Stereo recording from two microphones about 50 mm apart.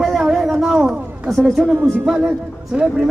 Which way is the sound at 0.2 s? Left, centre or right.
Centre.